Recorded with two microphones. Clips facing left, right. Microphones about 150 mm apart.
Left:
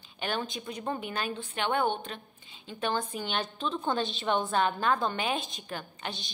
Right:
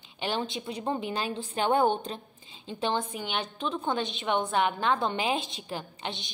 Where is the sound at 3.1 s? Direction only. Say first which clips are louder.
Even; 20° right (ahead or behind).